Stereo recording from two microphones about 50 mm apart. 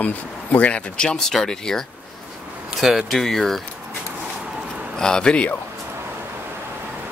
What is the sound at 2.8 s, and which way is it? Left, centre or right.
Speech, centre.